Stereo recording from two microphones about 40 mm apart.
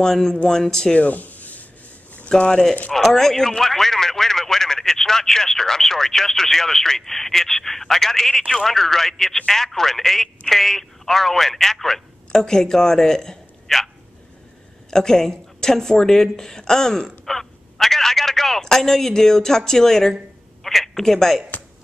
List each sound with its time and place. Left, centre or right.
0.0 s speech: centre
0.9 s a sound: left
2.2 s speech: left
2.9 s speech: centre
13.7 s speech: centre
14.9 s a woman's voice: centre